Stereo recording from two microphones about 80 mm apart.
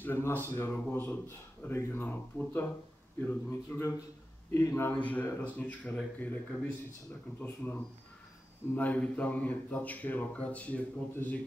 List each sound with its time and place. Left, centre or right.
0.0 s speech: left
4.9 s speech: centre